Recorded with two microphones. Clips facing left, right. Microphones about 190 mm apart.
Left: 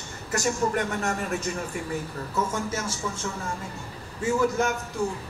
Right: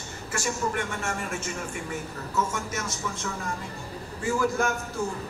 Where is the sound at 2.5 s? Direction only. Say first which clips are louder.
Left 3 dB; 30° left (ahead or behind).